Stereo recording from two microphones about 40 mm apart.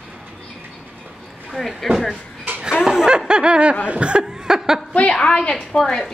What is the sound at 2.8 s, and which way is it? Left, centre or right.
Snicker, centre.